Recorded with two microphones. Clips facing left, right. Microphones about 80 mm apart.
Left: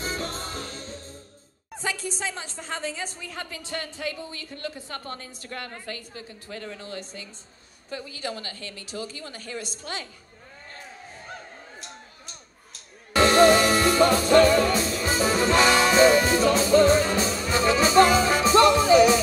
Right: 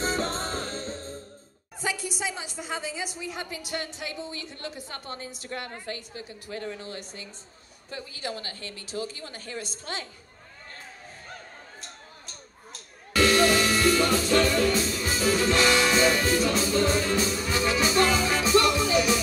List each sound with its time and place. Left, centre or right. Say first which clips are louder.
0.0 s music: right 3 dB; right
1.8 s a woman's voice: even; centre; by 10.0 s right
11.8 s a sound: left 2 dB; right
13.1 s music: left 5 dB; left
18.0 s music: left 4 dB; left